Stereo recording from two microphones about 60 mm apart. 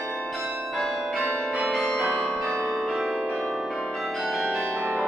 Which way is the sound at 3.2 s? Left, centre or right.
Centre.